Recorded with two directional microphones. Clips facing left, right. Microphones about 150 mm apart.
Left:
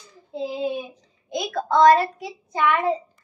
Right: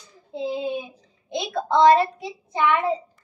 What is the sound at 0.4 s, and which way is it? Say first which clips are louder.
A child's voice: even; 25° right (ahead or behind).